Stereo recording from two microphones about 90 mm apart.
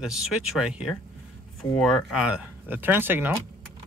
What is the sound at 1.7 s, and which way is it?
Speech, 5° left (ahead or behind).